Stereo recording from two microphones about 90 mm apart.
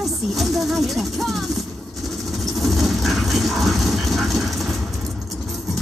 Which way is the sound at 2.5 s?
Centre (ahead or behind).